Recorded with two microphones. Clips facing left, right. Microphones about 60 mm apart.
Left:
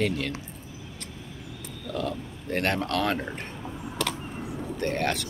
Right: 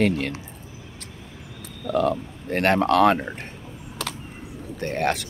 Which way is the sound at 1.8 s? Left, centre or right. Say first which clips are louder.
Right 9 dB; right.